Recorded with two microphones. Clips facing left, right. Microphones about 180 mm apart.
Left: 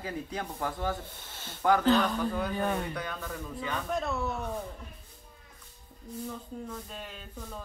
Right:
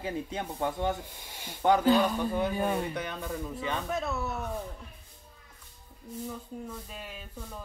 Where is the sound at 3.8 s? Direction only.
5° right (ahead or behind).